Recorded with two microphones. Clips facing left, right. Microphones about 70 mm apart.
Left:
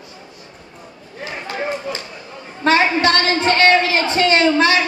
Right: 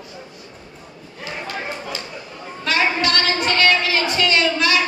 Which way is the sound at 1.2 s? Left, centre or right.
Left.